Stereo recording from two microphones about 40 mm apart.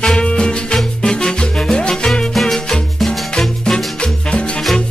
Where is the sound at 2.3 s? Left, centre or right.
Centre.